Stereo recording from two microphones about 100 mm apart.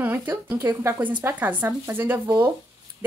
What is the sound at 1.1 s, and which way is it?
A woman's voice, 15° right (ahead or behind).